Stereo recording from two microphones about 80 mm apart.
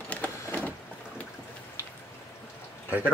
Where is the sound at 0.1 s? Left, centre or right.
Centre.